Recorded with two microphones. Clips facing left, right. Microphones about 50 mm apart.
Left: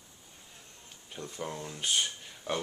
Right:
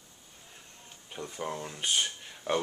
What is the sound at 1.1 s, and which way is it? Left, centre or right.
Speech, centre.